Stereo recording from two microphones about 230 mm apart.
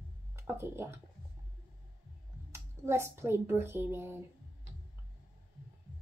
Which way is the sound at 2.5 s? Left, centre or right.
Centre.